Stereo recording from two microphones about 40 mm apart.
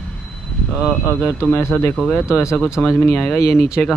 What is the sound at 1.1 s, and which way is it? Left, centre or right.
Speech, left.